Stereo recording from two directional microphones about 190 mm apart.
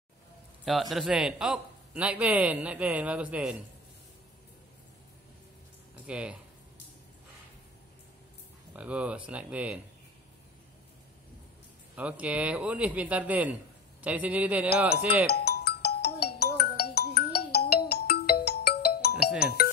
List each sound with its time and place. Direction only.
0.7 s a man's voice: centre (ahead or behind)
6.0 s speech: 5° right (ahead or behind)
8.7 s a man's voice: 5° right (ahead or behind)
11.9 s a man's voice: 5° right (ahead or behind)
15.2 s music: 55° left (ahead or behind)
19.4 s speech: 55° left (ahead or behind)